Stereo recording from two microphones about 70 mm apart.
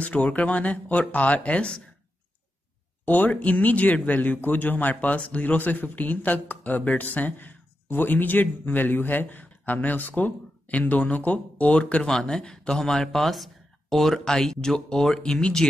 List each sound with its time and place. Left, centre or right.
0.0 s a man's voice: centre
3.1 s a man's voice: left